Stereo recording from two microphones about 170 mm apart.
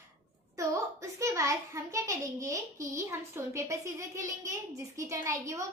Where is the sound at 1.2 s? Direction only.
20° right (ahead or behind).